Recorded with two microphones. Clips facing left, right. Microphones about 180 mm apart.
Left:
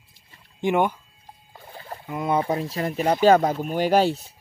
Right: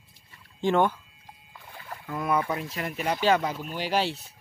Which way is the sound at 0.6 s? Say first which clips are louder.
Left 1 dB; 15° left (ahead or behind).